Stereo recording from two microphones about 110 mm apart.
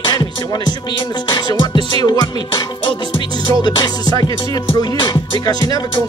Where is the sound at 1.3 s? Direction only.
45° left (ahead or behind).